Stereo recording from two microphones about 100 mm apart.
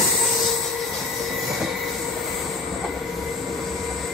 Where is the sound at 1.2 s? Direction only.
Centre (ahead or behind).